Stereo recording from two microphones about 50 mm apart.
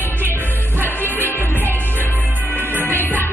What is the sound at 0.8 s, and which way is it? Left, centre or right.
Music, left.